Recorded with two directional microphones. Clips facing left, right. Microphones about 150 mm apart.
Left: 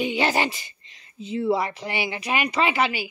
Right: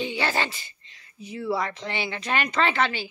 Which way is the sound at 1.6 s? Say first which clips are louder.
Left 2 dB; 10° left (ahead or behind).